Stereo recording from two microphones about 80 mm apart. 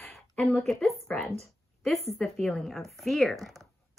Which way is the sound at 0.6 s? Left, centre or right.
Centre.